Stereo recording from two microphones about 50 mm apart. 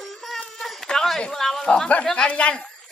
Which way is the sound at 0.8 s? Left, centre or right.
Centre.